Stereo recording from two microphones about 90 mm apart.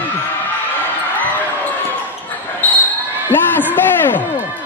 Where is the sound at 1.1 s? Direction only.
20° left (ahead or behind).